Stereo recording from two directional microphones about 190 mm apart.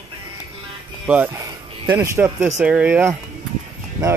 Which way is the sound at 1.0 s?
10° right (ahead or behind).